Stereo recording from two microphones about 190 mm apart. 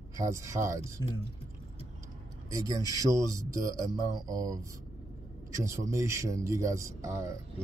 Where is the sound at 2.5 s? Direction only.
20° right (ahead or behind).